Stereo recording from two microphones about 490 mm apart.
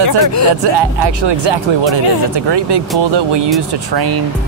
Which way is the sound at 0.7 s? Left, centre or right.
Right.